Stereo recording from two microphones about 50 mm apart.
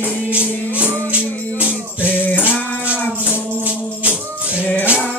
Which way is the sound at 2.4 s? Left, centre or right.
Right.